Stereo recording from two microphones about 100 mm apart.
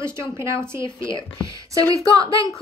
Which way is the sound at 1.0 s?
55° left (ahead or behind).